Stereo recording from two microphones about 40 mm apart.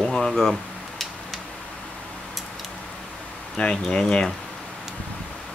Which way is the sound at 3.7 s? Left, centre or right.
Centre.